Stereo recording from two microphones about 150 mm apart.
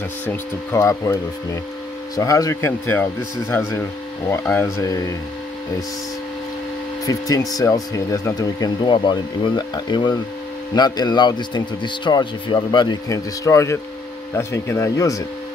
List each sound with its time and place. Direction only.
0.3 s speech: 15° left (ahead or behind)
7.1 s speech: 25° left (ahead or behind)